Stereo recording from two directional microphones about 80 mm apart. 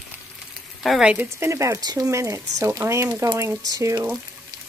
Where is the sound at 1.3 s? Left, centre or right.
Right.